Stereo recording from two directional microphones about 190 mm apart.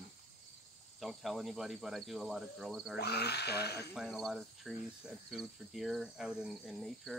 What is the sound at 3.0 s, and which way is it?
Speech, 60° left (ahead or behind).